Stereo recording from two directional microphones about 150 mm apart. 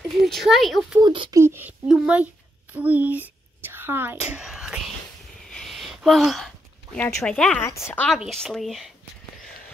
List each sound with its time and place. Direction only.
0.2 s speech: centre (ahead or behind)
1.0 s speech: 35° right (ahead or behind)
1.3 s speech: 15° right (ahead or behind)
2.7 s a sound: 10° right (ahead or behind)
7.2 s a woman's voice: 5° left (ahead or behind)
7.6 s a woman's voice: 15° left (ahead or behind)
8.1 s speech: centre (ahead or behind)